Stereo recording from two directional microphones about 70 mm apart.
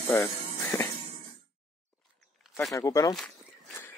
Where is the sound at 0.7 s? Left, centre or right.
Left.